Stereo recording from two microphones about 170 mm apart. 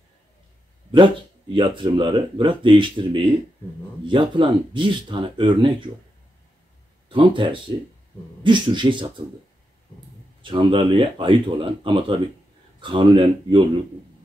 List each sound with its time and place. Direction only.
0.9 s speech: 30° right (ahead or behind)
7.1 s speech: 30° right (ahead or behind)
10.4 s speech: 30° right (ahead or behind)